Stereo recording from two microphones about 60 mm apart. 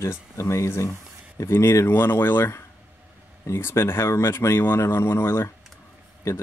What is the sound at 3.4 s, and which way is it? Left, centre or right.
Speech, left.